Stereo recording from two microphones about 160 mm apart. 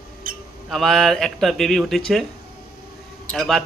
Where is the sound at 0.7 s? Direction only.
Centre (ahead or behind).